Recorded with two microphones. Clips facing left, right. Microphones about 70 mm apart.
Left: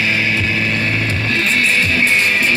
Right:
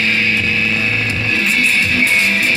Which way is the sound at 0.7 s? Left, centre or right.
Left.